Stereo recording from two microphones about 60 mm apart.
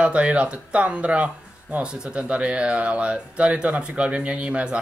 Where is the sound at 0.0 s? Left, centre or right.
Centre.